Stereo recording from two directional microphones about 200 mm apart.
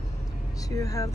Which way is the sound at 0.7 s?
15° left (ahead or behind).